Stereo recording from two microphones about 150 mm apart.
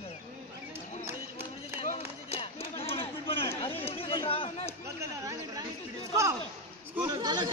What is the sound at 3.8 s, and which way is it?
Chatter, 35° left (ahead or behind).